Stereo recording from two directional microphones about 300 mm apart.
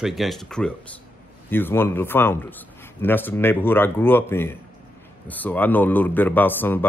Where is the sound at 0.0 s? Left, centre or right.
Centre.